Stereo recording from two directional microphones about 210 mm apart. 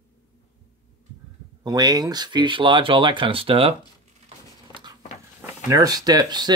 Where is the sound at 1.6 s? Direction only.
20° right (ahead or behind).